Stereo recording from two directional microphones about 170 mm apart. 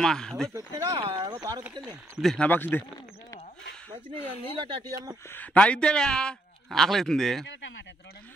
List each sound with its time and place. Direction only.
0.0 s a man's voice: 5° left (ahead or behind)
0.5 s speech: 20° right (ahead or behind)
1.6 s a man's voice: 5° right (ahead or behind); by 2.8 s 10° left (ahead or behind)
4.6 s speech: 30° right (ahead or behind)
5.3 s a man's voice: 10° left (ahead or behind)